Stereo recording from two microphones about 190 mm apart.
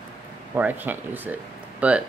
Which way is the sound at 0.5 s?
10° right (ahead or behind).